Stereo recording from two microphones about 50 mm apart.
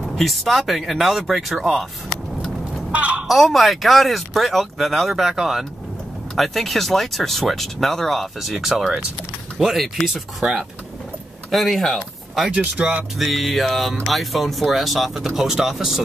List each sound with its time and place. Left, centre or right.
0.0 s speech: centre
2.9 s a sound: right
3.3 s speech: centre
11.5 s speech: centre
12.4 s speech: right
13.2 s speech: centre